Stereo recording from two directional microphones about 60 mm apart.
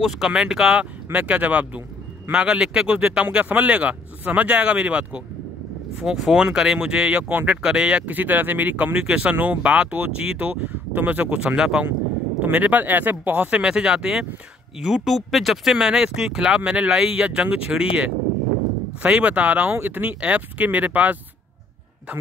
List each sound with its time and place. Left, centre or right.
0.0 s speech: centre
1.1 s speech: right
5.9 s speech: centre; by 8.9 s right
8.9 s speech: centre
11.2 s speech: centre
12.4 s speech: right
13.6 s speech: centre
15.0 s speech: centre; by 21.2 s right